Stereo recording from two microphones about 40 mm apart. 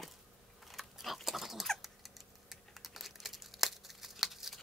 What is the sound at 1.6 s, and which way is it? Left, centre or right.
Typing, centre.